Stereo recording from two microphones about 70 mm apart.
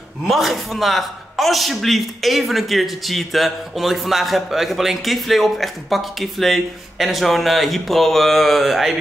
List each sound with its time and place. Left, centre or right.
0.3 s a man's voice: centre